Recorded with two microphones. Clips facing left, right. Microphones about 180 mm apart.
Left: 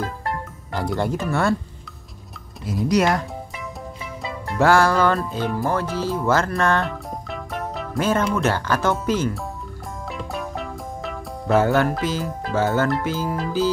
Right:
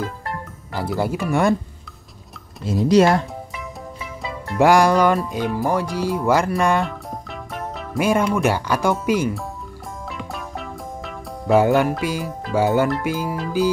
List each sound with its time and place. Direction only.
0.7 s speech: 5° right (ahead or behind)
2.6 s speech: 25° right (ahead or behind)
3.5 s music: centre (ahead or behind)
4.6 s speech: 15° right (ahead or behind)
7.2 s music: centre (ahead or behind)
8.0 s speech: 10° right (ahead or behind)
10.0 s music: centre (ahead or behind)
11.5 s speech: 15° right (ahead or behind)